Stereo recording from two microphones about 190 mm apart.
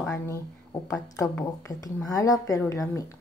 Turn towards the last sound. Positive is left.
turn(degrees=15)  # may be behind; listen again after turning